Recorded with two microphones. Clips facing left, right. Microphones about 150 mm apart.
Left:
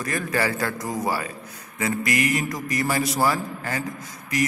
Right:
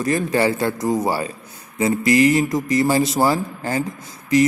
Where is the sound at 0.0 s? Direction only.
25° right (ahead or behind).